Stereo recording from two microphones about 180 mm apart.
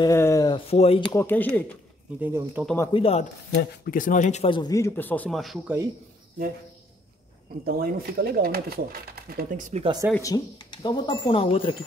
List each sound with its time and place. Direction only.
0.0 s speech: 15° left (ahead or behind); by 1.0 s 35° left (ahead or behind)
1.1 s speech: 10° left (ahead or behind)
2.2 s speech: 10° right (ahead or behind)
2.6 s speech: 10° left (ahead or behind)
2.9 s speech: 35° left (ahead or behind)
3.9 s speech: 45° left (ahead or behind); by 5.8 s centre (ahead or behind)
7.6 s speech: 55° right (ahead or behind)
10.1 s speech: 20° left (ahead or behind)